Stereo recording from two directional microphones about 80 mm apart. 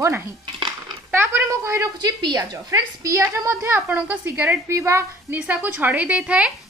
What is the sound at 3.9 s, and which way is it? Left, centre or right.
Speech, right.